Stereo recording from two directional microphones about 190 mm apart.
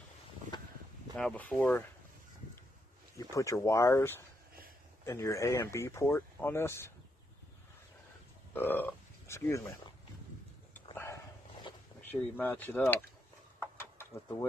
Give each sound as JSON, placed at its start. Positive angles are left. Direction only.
{"t": 0.5, "sound": "a sound", "side_deg": 20}
{"t": 1.1, "sound": "speech", "side_deg": 5}
{"t": 3.2, "sound": "speech", "side_deg": 15}
{"t": 8.5, "sound": "speech", "side_deg": 10}
{"t": 10.7, "sound": "a sound", "side_deg": 10}
{"t": 12.4, "sound": "speech", "side_deg": 10}
{"t": 13.6, "sound": "mechanisms", "side_deg": 10}